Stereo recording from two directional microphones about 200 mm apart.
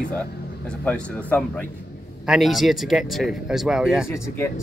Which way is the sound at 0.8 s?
5° left (ahead or behind).